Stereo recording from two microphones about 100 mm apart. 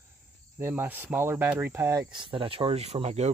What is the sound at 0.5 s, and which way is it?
Speech, 25° right (ahead or behind).